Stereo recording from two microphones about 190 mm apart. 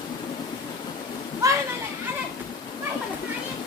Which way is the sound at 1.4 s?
15° right (ahead or behind).